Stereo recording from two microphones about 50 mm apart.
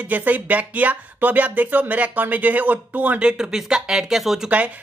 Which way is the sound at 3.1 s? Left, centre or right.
Centre.